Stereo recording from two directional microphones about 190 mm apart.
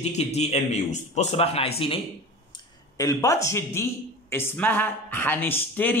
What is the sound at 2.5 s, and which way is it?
Speech, 20° left (ahead or behind).